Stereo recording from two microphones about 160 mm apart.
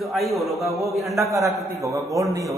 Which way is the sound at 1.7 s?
20° right (ahead or behind).